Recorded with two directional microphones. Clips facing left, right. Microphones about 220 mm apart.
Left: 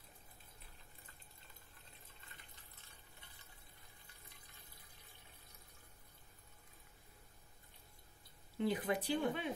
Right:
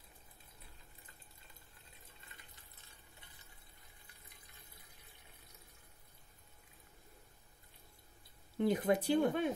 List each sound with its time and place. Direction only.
8.5 s speech: 45° right (ahead or behind)